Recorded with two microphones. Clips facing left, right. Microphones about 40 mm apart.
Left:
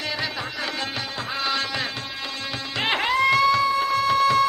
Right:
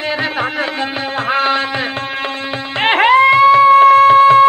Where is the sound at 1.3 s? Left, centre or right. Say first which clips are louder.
Right 11 dB; right.